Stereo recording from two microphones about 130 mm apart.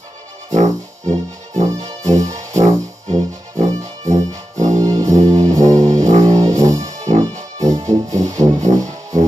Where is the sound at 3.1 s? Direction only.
55° right (ahead or behind).